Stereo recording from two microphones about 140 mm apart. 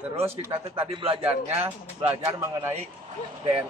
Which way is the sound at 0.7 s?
40° right (ahead or behind).